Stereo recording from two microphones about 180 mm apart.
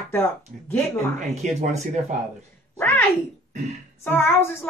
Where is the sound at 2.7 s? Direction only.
10° left (ahead or behind).